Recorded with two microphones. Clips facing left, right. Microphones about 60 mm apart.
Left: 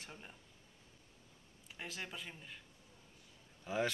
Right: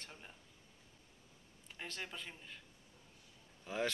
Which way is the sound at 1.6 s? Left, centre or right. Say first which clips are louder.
Even; centre.